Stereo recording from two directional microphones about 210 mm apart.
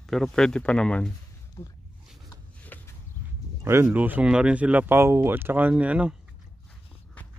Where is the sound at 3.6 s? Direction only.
10° right (ahead or behind).